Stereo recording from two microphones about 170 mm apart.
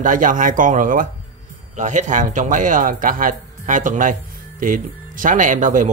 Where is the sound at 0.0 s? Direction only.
50° right (ahead or behind).